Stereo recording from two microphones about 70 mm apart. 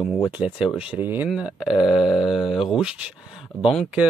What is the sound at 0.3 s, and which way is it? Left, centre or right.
Speech, centre.